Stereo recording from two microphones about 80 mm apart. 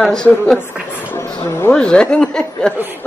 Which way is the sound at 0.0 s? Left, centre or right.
Centre.